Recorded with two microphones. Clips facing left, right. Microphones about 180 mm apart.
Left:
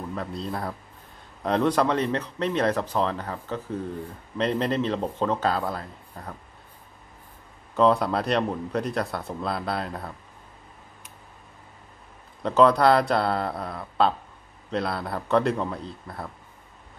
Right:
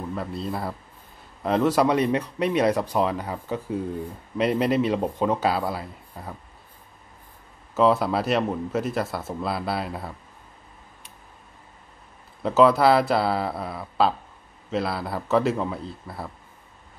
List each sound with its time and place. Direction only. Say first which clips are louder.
0.1 s speech: right 2 dB; 5° right (ahead or behind)
7.7 s speech: right 1 dB; 5° right (ahead or behind)
12.4 s speech: right 1 dB; 5° right (ahead or behind)